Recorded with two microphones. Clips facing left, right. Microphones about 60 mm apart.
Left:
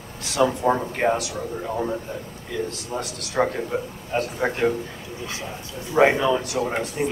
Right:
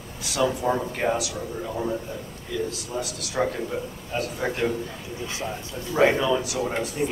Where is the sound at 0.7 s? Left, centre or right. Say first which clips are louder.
Left 3 dB; left.